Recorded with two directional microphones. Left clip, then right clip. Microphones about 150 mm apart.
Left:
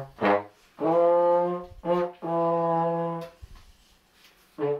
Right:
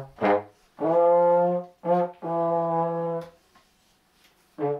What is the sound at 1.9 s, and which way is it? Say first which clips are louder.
Brass instrument: right 2 dB; centre (ahead or behind).